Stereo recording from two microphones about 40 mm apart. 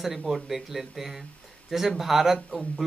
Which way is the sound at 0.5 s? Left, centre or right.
Centre.